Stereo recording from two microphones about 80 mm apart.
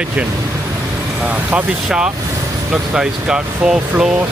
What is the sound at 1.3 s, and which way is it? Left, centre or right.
Speech, centre.